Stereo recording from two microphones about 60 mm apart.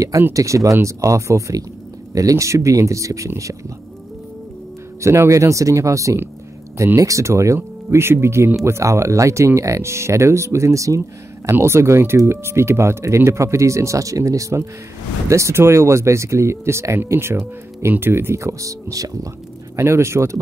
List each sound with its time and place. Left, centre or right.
0.3 s speech: right
5.0 s speech: right
11.5 s speech: right
19.7 s speech: right